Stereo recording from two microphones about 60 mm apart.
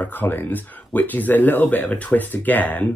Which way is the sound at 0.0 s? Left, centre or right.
Left.